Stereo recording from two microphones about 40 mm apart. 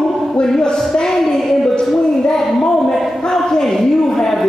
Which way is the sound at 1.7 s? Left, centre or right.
Left.